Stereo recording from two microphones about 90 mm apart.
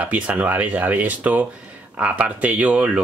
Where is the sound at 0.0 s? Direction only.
15° right (ahead or behind).